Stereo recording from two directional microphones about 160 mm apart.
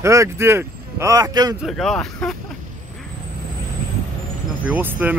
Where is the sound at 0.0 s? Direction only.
20° right (ahead or behind).